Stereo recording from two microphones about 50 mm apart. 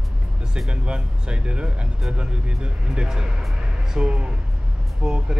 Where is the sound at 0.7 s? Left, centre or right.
Centre.